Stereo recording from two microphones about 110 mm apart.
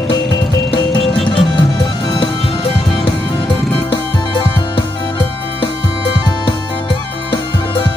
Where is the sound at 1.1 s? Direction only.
55° left (ahead or behind).